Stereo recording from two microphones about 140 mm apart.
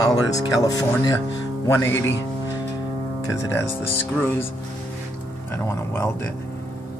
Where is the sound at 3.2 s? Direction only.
25° left (ahead or behind).